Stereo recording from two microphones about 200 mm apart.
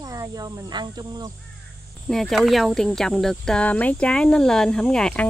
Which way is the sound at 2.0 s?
Centre (ahead or behind).